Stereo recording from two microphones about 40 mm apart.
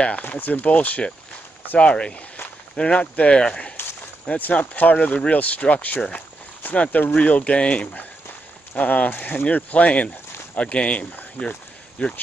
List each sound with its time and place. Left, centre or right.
0.3 s speech: left
0.7 s speech: left
4.4 s speech: left
4.9 s speech: left
8.7 s speech: left